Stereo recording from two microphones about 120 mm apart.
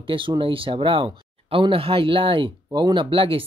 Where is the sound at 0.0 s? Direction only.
45° right (ahead or behind).